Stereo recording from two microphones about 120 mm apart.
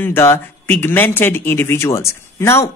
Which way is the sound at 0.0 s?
20° left (ahead or behind).